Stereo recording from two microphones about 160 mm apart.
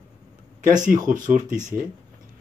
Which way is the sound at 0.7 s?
55° right (ahead or behind).